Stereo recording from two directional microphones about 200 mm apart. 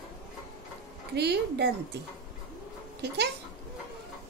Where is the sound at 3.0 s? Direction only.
55° right (ahead or behind).